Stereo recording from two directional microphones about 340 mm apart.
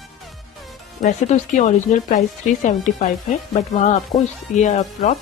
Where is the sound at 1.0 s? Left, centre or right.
Left.